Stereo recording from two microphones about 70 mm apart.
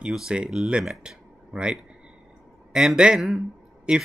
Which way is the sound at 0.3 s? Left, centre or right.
Centre.